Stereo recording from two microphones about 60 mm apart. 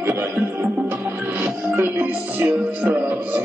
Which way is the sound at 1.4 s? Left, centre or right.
Right.